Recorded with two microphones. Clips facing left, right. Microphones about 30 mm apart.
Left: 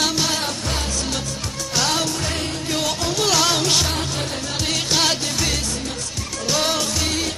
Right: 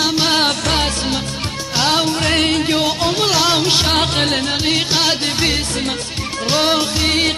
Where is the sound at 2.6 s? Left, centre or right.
Right.